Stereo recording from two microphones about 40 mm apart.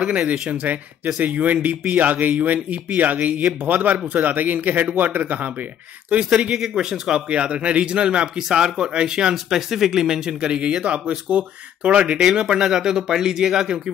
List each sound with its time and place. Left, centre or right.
0.5 s a man's voice: right
6.5 s speech: centre
8.5 s speech: centre
9.3 s speech: centre; by 12.2 s right
12.2 s speech: centre